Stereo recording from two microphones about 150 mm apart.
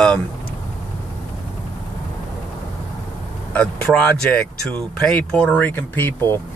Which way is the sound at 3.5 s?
5° left (ahead or behind).